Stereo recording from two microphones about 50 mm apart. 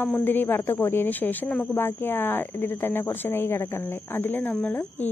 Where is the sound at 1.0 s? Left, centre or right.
Left.